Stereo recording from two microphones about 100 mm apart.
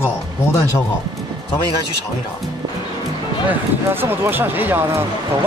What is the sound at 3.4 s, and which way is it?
Speech, 20° right (ahead or behind).